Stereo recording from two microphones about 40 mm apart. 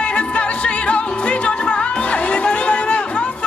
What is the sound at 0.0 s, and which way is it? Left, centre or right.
Music, left.